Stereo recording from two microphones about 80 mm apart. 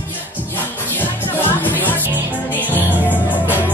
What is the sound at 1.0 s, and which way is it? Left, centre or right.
Music, left.